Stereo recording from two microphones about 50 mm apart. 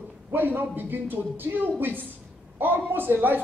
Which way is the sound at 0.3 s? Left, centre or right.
Right.